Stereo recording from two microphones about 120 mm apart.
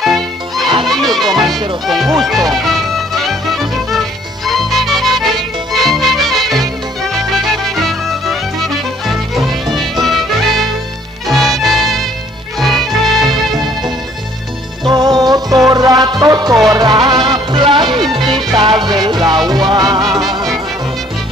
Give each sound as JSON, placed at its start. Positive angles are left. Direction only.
{"t": 0.0, "sound": "music", "side_deg": 0}
{"t": 14.9, "sound": "music", "side_deg": -35}